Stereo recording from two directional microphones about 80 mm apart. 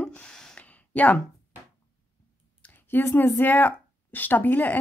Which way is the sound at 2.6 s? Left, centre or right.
Left.